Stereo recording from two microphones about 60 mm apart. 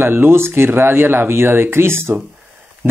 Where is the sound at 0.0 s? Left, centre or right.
Right.